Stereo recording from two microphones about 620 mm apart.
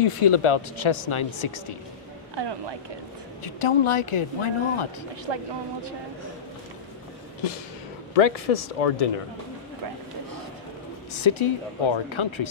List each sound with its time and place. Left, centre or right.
0.0 s speech: left
3.4 s speech: left
5.2 s speech: right
8.1 s speech: left
11.2 s speech: left